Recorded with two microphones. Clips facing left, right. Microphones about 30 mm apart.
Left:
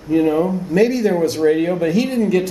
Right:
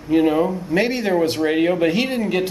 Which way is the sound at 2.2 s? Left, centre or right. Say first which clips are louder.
Left 4 dB; right.